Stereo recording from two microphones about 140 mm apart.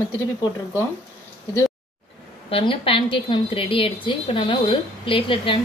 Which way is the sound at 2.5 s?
40° left (ahead or behind).